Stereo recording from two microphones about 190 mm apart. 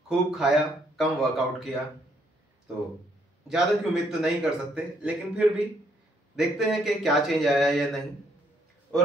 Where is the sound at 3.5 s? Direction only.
Centre (ahead or behind).